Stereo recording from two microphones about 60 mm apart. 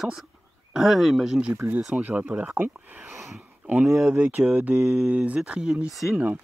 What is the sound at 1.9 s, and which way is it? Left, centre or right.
Speech, right.